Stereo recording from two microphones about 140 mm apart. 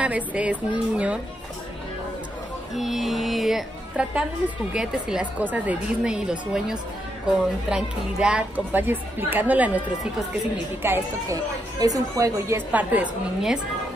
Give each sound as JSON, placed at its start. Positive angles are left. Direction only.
{"t": 0.0, "sound": "a child's voice", "side_deg": -10}
{"t": 2.7, "sound": "a woman's voice", "side_deg": 0}
{"t": 10.8, "sound": "a child's voice", "side_deg": -15}